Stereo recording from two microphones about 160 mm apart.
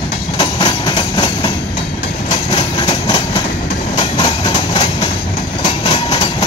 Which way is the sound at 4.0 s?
35° left (ahead or behind).